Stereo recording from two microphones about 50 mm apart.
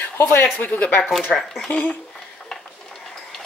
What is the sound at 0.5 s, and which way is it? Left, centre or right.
Speech, left.